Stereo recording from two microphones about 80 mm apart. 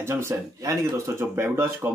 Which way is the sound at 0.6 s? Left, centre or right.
Right.